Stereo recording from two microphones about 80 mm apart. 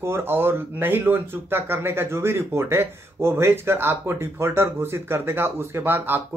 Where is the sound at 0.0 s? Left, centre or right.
Right.